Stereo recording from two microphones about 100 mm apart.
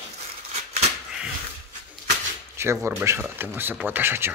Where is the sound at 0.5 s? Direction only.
90° right.